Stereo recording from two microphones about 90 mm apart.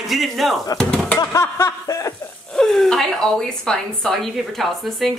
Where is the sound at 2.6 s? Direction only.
5° left (ahead or behind).